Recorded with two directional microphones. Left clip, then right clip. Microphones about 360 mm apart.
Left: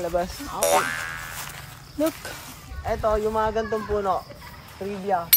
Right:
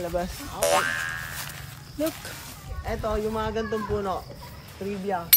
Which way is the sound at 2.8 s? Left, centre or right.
Centre.